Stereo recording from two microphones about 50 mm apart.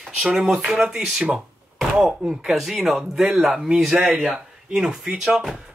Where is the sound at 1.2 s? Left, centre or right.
Centre.